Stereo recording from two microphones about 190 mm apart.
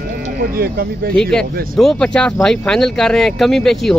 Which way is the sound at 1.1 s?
5° left (ahead or behind).